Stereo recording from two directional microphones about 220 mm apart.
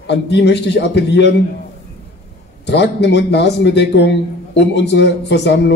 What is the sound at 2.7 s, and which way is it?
A man's voice, 50° left (ahead or behind).